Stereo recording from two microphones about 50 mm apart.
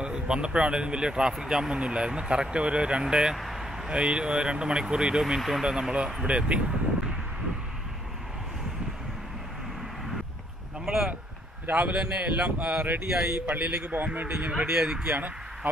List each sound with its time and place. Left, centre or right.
0.0 s speech: centre
3.3 s vehicle: centre
3.9 s speech: centre
10.9 s a sound: centre
11.7 s speech: right
14.7 s speech: centre
15.0 s speech: right